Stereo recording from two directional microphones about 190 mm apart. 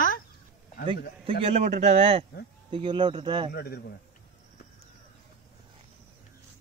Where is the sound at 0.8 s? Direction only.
30° right (ahead or behind).